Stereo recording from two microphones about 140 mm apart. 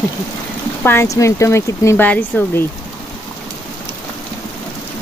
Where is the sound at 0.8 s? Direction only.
15° left (ahead or behind).